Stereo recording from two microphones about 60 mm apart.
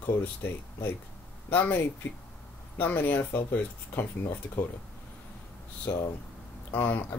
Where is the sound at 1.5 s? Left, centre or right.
Left.